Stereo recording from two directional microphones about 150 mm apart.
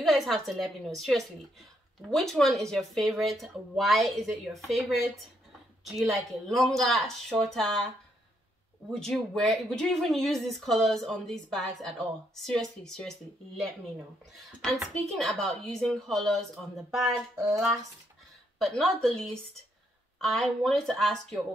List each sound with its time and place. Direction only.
0.0 s speech: centre (ahead or behind)
9.0 s speech: 5° left (ahead or behind)
17.4 s speech: 20° right (ahead or behind)
18.6 s speech: centre (ahead or behind)